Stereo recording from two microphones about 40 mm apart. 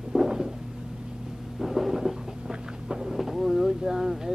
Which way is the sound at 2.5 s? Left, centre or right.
Centre.